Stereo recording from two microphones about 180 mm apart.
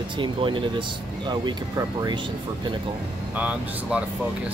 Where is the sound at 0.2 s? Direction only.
25° right (ahead or behind).